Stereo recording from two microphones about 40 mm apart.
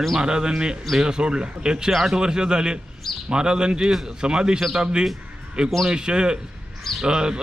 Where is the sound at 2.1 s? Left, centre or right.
Centre.